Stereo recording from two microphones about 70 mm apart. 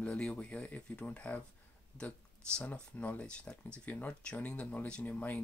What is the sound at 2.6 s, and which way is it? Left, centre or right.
Speech, left.